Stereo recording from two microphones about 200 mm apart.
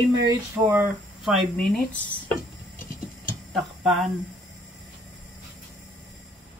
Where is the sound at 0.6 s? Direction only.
5° right (ahead or behind).